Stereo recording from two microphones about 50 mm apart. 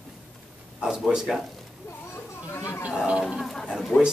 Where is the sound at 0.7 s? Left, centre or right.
Centre.